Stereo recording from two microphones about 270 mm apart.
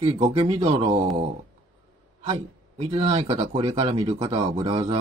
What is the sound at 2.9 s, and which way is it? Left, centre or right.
Speech, centre.